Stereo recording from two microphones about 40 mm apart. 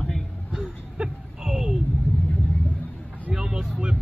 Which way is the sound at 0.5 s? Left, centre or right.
Centre.